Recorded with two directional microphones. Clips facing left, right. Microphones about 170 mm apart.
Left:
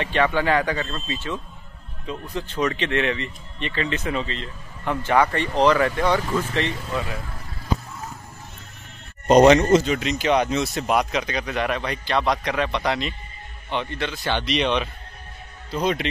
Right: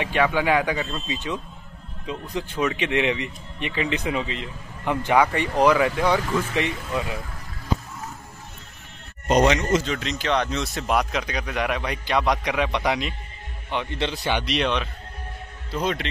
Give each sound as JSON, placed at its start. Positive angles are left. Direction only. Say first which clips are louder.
{"t": 0.0, "sound": "speech", "louder": "even", "side_deg": -10}
{"t": 9.3, "sound": "speech", "louder": "left 6 dB", "side_deg": 35}
{"t": 9.8, "sound": "a man's voice", "louder": "left 4 dB", "side_deg": 10}
{"t": 13.9, "sound": "speech", "louder": "right 2 dB", "side_deg": -25}
{"t": 14.2, "sound": "speech", "louder": "left 2 dB", "side_deg": -10}